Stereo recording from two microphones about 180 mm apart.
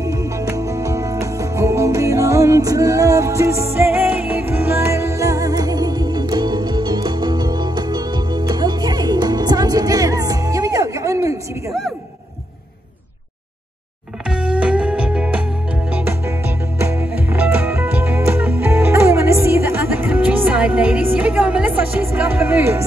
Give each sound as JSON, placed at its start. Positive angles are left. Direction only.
{"t": 0.0, "sound": "music", "side_deg": -15}
{"t": 14.3, "sound": "music", "side_deg": -5}